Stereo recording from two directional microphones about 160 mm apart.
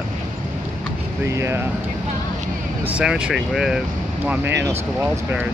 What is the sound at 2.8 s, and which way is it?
Speech, 5° right (ahead or behind).